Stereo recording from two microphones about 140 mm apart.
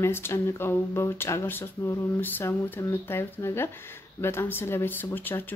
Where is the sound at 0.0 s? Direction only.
15° left (ahead or behind).